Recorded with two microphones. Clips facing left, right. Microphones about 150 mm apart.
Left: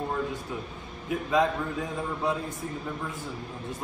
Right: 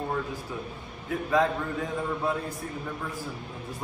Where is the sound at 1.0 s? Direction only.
20° left (ahead or behind).